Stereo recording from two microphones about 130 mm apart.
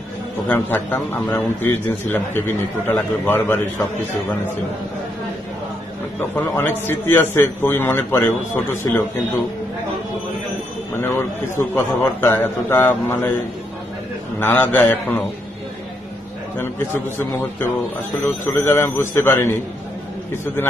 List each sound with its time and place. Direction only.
0.5 s a man's voice: 15° left (ahead or behind)
6.3 s a man's voice: 15° left (ahead or behind)
11.0 s a man's voice: 20° left (ahead or behind)
14.4 s a man's voice: 15° left (ahead or behind)
17.2 s a man's voice: 15° left (ahead or behind)